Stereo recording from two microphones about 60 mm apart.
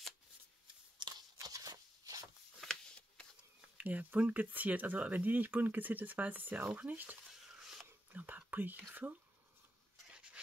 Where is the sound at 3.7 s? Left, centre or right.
Right.